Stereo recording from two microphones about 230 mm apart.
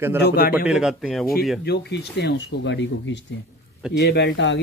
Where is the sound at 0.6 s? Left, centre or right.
Centre.